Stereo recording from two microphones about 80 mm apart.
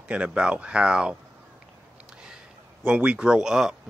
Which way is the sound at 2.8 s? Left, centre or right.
Centre.